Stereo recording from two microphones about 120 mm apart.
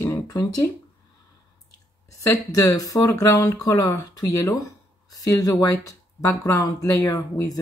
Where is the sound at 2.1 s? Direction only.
25° left (ahead or behind).